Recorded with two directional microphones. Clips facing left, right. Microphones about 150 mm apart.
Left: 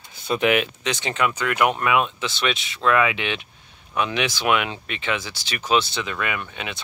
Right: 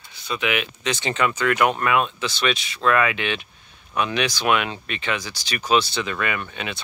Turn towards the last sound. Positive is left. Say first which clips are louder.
# right 1 dB
turn(degrees=15)  # may be behind; listen again after turning